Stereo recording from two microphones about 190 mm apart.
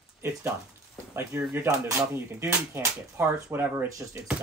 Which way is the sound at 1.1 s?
10° right (ahead or behind).